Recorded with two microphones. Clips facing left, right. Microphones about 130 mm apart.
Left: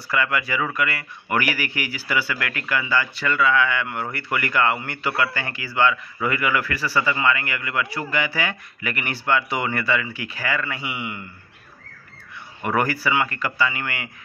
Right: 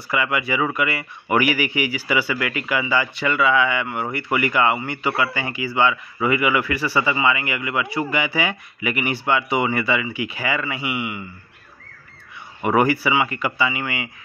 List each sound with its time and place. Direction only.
0.1 s speech: 15° right (ahead or behind)
1.3 s a man's voice: 10° right (ahead or behind)
12.6 s a man's voice: 10° right (ahead or behind)